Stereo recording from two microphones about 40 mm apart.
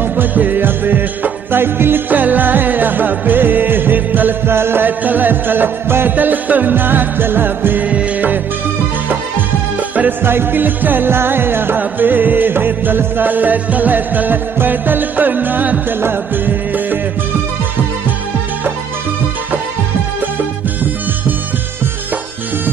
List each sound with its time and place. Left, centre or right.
0.0 s music: right
4.5 s music: right
4.8 s music: right
6.1 s music: right
6.7 s music: right
7.8 s music: right
10.2 s music: right
16.0 s music: right